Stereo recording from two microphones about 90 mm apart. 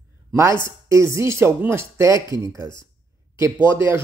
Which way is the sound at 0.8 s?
30° right (ahead or behind).